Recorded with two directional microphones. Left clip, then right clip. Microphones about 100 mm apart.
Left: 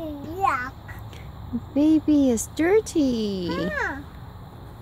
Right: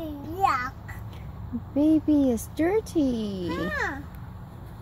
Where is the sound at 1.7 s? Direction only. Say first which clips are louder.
Left 2 dB; 25° left (ahead or behind).